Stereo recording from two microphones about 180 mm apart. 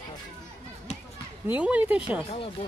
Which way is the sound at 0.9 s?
40° left (ahead or behind).